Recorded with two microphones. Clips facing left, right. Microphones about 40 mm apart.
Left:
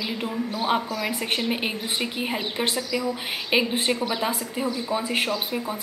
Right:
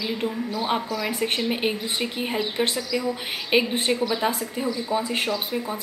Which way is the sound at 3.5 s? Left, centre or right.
Centre.